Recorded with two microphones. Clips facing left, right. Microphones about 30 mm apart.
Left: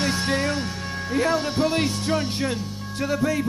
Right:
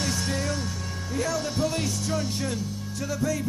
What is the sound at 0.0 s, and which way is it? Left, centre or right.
Speech, left.